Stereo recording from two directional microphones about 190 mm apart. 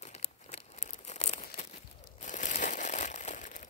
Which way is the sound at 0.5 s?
35° left (ahead or behind).